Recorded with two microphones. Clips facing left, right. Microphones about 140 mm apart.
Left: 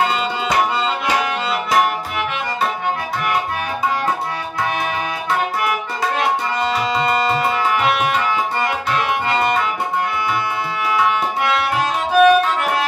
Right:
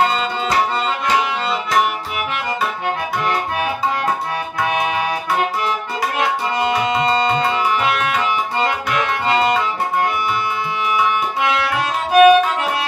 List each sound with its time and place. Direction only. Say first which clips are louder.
4.6 s music: right 3 dB; 20° right (ahead or behind)
6.6 s music: right 3 dB; 20° right (ahead or behind)
12.1 s music: right 3 dB; 10° right (ahead or behind)